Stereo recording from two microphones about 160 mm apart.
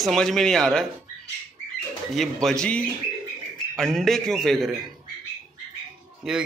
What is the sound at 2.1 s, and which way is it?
Speech, centre (ahead or behind).